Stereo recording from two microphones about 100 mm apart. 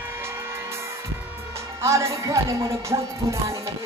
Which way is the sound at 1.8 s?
30° right (ahead or behind).